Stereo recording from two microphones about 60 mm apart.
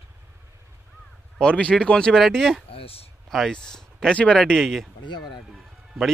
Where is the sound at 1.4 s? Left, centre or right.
Centre.